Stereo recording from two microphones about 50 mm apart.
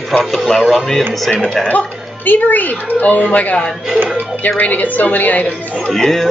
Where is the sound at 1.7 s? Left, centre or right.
Left.